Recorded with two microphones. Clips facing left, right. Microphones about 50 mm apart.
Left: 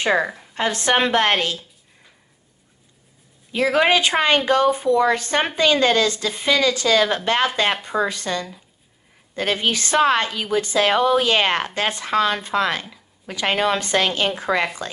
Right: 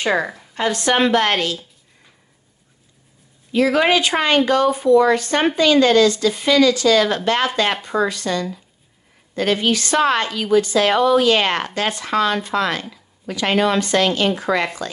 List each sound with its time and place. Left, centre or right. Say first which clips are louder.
0.0 s a woman's voice: even; centre
0.6 s a woman's voice: right 2 dB; left
3.5 s a woman's voice: right 2 dB; left
8.1 s a woman's voice: right 3 dB; left